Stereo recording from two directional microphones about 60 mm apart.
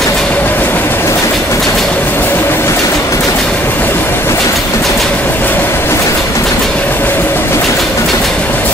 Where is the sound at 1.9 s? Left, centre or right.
Left.